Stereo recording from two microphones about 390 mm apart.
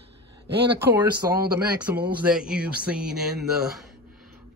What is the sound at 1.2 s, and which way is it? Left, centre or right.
Speech, centre.